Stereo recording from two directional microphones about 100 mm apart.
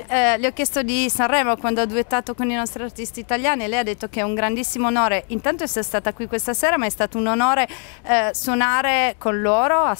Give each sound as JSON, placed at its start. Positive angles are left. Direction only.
{"t": 0.1, "sound": "speech", "side_deg": 15}